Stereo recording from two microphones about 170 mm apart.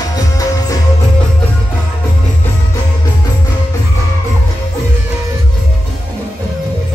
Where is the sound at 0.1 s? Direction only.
20° left (ahead or behind).